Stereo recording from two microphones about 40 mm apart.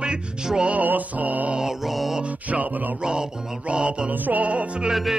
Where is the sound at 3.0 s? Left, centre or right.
Centre.